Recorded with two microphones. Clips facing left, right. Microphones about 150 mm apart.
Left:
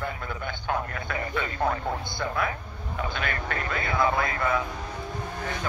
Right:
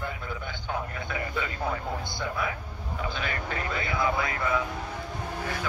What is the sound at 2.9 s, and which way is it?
Speech, 60° left (ahead or behind).